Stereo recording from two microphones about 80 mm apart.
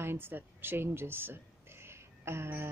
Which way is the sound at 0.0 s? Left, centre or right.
Right.